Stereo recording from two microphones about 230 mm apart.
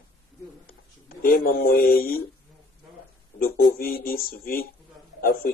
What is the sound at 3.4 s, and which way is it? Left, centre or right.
Speech, left.